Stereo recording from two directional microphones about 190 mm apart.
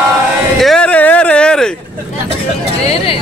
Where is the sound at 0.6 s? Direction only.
5° left (ahead or behind).